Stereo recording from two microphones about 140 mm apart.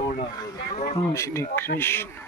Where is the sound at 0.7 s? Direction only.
50° left (ahead or behind).